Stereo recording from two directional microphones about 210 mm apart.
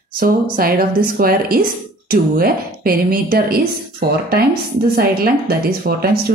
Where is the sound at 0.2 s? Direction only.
45° right (ahead or behind).